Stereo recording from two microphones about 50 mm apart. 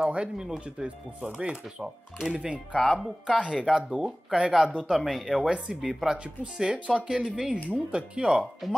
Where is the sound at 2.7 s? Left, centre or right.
Left.